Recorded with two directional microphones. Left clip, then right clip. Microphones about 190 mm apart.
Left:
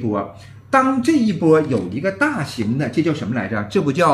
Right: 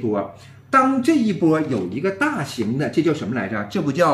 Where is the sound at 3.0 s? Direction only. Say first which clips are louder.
Even; 10° left (ahead or behind).